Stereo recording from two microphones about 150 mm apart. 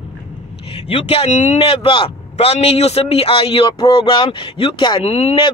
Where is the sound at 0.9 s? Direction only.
40° left (ahead or behind).